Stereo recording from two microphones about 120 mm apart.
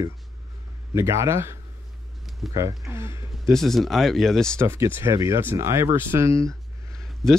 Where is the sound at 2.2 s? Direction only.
Centre (ahead or behind).